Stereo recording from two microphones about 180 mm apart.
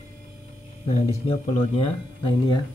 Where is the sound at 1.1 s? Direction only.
35° left (ahead or behind).